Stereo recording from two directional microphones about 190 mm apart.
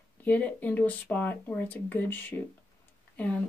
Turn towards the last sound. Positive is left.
turn(degrees=10)  # may be behind; listen again after turning